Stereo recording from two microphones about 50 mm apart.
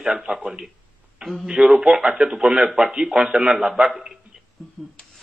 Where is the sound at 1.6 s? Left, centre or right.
Right.